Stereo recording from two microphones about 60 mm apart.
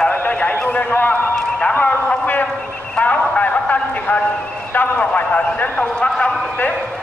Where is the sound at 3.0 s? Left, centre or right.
Left.